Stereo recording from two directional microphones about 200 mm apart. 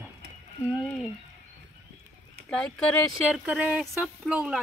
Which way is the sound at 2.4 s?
5° left (ahead or behind).